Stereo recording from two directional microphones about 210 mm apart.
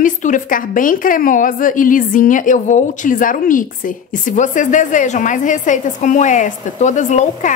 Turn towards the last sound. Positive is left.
turn(degrees=35)  # may be behind; listen again after turning